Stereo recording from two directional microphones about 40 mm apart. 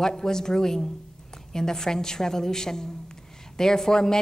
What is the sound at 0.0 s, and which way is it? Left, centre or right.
Speech, centre.